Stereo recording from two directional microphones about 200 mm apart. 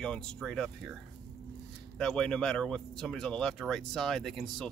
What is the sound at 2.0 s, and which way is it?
Speech, 5° left (ahead or behind).